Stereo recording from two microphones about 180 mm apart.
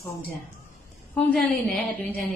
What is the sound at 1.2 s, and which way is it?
Speech, 10° left (ahead or behind).